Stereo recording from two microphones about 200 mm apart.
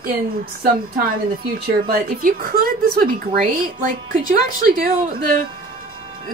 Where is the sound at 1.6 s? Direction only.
50° right (ahead or behind).